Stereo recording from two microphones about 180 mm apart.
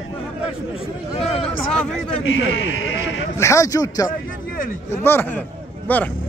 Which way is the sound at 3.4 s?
15° left (ahead or behind).